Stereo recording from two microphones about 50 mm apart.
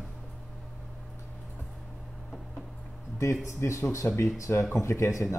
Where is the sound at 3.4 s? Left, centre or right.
Left.